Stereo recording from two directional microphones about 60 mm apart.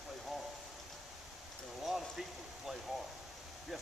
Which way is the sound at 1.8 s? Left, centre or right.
Centre.